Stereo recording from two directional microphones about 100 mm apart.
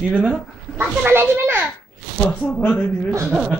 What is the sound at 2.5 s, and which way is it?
Speech, 15° left (ahead or behind).